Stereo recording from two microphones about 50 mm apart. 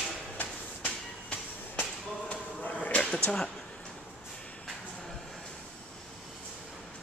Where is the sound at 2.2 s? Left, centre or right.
Left.